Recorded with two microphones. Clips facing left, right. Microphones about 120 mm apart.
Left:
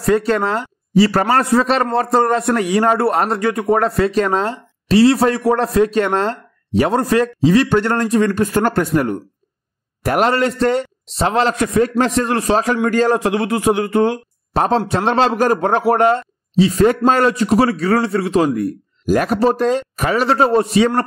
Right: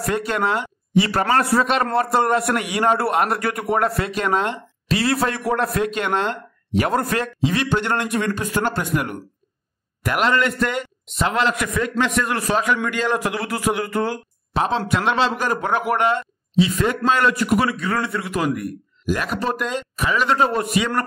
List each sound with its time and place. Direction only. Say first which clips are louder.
0.0 s a man's voice: left 6 dB; 35° left (ahead or behind)
1.4 s a man's voice: left 4 dB; 20° left (ahead or behind)
1.7 s a man's voice: left 3 dB; 35° left (ahead or behind)
14.5 s speech: left 5 dB; 40° left (ahead or behind)
17.3 s speech: left 5 dB; 25° left (ahead or behind)